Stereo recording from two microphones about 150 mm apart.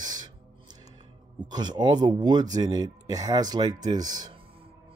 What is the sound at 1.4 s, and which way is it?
Speech, 30° right (ahead or behind).